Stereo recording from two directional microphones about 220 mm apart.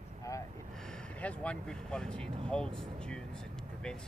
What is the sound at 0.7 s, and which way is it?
Speech, 5° left (ahead or behind).